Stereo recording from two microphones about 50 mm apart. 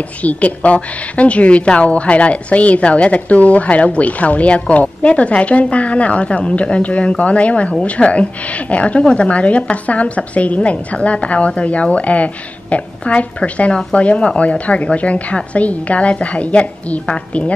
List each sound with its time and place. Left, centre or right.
0.2 s a woman's voice: left